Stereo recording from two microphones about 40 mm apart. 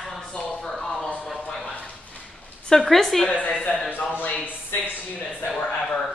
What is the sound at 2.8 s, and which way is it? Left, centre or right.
Speech, centre.